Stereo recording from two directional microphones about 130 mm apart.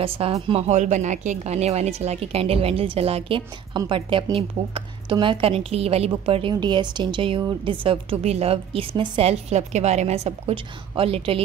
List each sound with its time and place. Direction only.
0.0 s a woman's voice: 45° right (ahead or behind)
6.5 s a woman's voice: 35° right (ahead or behind)